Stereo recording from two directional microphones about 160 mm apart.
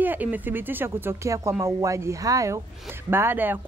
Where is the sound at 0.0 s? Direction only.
10° right (ahead or behind).